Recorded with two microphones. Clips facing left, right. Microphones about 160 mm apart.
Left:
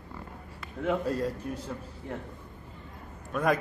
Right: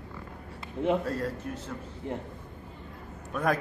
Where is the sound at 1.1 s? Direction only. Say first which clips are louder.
Left 2 dB; 15° left (ahead or behind).